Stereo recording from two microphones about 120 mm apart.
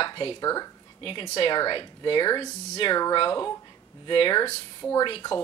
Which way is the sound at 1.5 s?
40° left (ahead or behind).